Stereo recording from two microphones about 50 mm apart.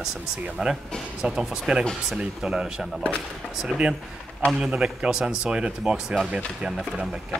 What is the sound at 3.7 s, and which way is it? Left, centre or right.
Speech, centre.